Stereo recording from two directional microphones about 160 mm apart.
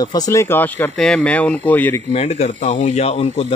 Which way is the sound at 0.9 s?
5° left (ahead or behind).